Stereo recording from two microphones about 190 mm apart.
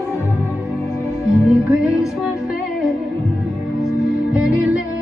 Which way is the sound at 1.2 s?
5° right (ahead or behind).